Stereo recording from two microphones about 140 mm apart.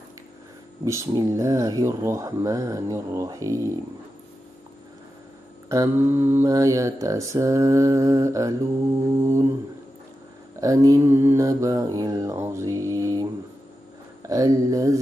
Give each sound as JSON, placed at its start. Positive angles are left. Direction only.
{"t": 0.8, "sound": "speech", "side_deg": -20}
{"t": 5.7, "sound": "speech", "side_deg": -20}
{"t": 10.6, "sound": "mantra", "side_deg": -25}
{"t": 14.2, "sound": "speech", "side_deg": -25}